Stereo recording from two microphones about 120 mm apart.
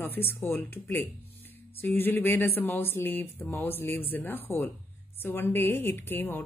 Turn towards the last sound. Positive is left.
turn(degrees=15)  # may be behind; listen again after turning